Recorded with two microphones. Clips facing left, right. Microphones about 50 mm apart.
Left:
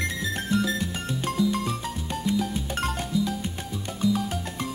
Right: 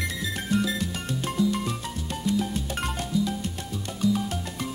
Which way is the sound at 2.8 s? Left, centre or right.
Centre.